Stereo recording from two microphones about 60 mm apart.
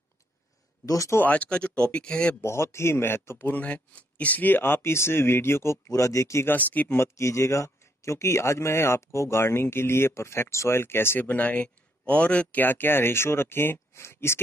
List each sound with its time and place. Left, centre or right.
0.8 s speech: left
1.2 s speech: left
2.4 s speech: left
3.6 s speech: left
5.9 s speech: left
6.4 s speech: left
6.9 s speech: left
11.1 s speech: left